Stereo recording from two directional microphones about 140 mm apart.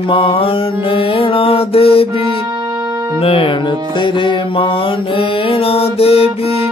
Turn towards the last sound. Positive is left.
turn(degrees=45)  # may be behind; listen again after turning